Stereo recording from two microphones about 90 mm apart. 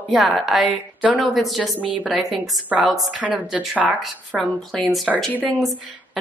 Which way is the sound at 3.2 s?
15° right (ahead or behind).